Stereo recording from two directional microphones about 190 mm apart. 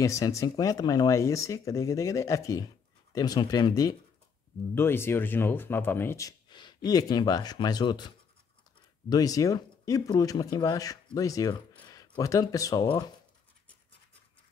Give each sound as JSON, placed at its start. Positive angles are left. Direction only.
{"t": 0.0, "sound": "speech", "side_deg": 15}
{"t": 9.1, "sound": "speech", "side_deg": 20}